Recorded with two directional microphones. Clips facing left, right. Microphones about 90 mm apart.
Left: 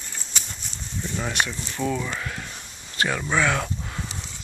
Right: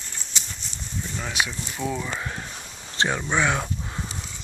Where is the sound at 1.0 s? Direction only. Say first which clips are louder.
Left 5 dB; 5° left (ahead or behind).